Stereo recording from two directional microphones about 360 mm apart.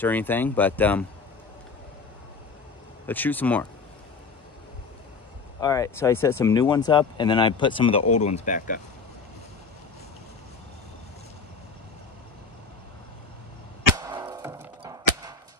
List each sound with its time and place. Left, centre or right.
0.0 s speech: centre
3.1 s speech: centre
5.6 s speech: centre
13.9 s a sound: centre